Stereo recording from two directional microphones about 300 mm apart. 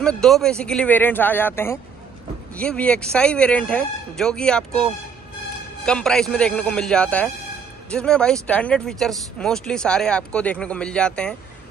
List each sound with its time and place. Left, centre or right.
0.0 s speech: centre
5.9 s speech: centre